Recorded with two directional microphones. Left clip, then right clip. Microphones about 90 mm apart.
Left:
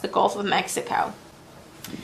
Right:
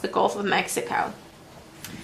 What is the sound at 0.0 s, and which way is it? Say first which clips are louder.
Speech: left 1 dB; 20° left (ahead or behind).